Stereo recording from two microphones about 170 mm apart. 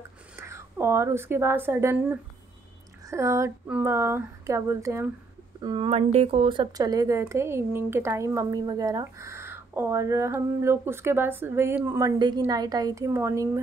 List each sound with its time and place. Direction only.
0.4 s a woman's voice: 15° right (ahead or behind)
5.9 s speech: 40° right (ahead or behind); by 12.1 s 10° right (ahead or behind)
12.4 s a woman's voice: 25° right (ahead or behind)